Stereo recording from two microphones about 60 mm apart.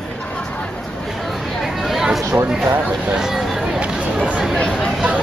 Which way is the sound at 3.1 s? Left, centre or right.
Centre.